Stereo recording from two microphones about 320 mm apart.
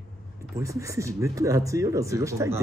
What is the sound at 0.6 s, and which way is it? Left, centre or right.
Speech, centre.